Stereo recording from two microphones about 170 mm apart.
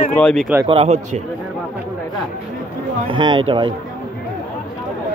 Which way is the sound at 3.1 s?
30° right (ahead or behind).